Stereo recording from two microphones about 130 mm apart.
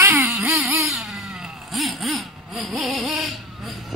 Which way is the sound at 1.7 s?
Centre (ahead or behind).